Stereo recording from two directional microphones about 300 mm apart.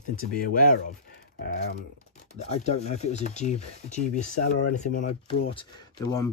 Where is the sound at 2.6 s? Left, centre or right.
Left.